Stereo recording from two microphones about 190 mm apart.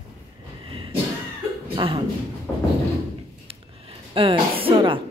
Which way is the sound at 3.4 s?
30° right (ahead or behind).